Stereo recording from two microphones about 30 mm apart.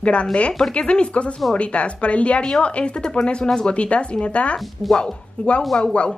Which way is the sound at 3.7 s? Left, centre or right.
Left.